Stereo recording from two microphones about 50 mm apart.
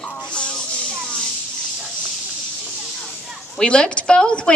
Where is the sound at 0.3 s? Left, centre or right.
Left.